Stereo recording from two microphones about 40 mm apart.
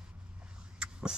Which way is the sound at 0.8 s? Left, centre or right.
Right.